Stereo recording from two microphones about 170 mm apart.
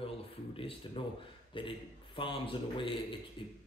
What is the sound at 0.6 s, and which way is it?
A man's voice, 30° left (ahead or behind).